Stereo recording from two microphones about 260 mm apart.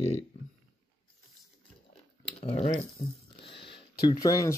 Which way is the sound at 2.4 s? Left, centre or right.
Left.